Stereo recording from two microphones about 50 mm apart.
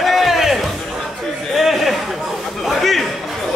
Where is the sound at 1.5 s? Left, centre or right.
Centre.